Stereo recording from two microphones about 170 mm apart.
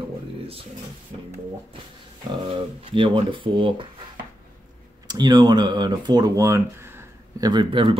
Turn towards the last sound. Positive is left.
turn(degrees=-30)  # may be behind; listen again after turning